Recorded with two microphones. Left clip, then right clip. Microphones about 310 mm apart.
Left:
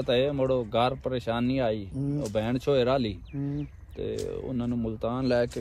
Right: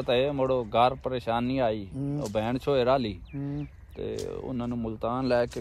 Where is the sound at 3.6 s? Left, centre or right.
Centre.